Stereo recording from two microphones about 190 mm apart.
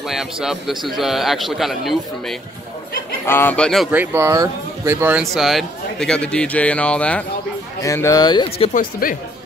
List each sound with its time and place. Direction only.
0.1 s a man's voice: centre (ahead or behind)
3.3 s speech: 10° left (ahead or behind); by 5.2 s 10° right (ahead or behind)
5.2 s a man's voice: centre (ahead or behind); by 8.7 s 25° left (ahead or behind)
9.0 s speech: 50° left (ahead or behind)